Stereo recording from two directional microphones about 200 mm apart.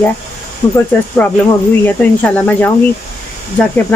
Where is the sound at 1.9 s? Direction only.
10° left (ahead or behind).